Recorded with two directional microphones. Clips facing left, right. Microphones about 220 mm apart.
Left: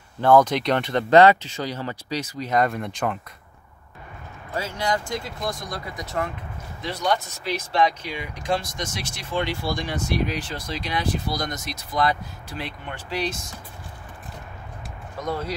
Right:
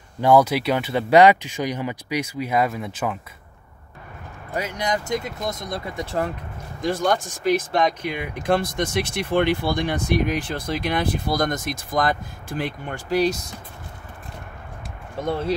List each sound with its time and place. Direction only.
0.2 s speech: 10° right (ahead or behind)
4.6 s speech: 20° right (ahead or behind)
6.8 s speech: 50° right (ahead or behind)
15.1 s speech: 25° right (ahead or behind)